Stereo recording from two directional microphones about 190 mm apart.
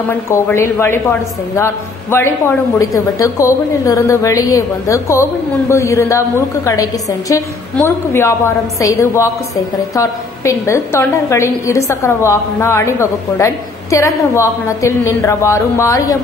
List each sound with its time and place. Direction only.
0.1 s a woman's voice: 10° left (ahead or behind)